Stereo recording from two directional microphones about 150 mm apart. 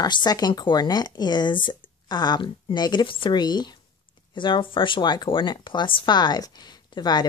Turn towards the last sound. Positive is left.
turn(degrees=30)  # may be behind; listen again after turning